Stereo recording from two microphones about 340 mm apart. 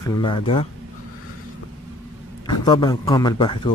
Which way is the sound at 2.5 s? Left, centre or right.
Centre.